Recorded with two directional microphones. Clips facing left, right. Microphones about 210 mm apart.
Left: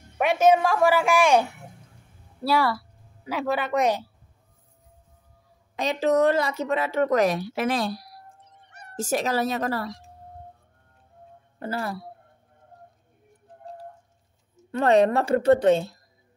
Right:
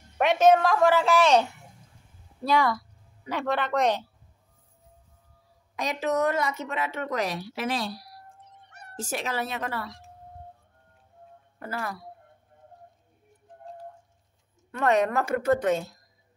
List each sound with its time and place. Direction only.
0.2 s a woman's voice: 10° left (ahead or behind)
5.8 s a woman's voice: 30° left (ahead or behind); by 8.1 s 50° left (ahead or behind)
8.9 s a woman's voice: 40° left (ahead or behind)
11.6 s speech: 30° left (ahead or behind)
14.7 s a woman's voice: 30° left (ahead or behind)